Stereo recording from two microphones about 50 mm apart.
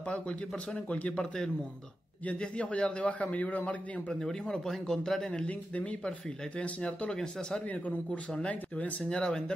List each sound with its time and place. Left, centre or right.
0.0 s a man's voice: left
1.2 s a man's voice: centre
2.2 s a man's voice: left
4.1 s a man's voice: centre
5.5 s a man's voice: left; by 7.6 s centre
7.6 s a man's voice: left